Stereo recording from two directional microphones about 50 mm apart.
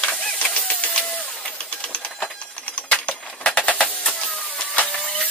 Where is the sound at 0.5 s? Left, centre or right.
Left.